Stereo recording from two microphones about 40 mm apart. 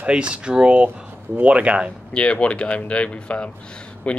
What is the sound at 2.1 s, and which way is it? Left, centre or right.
Speech, left.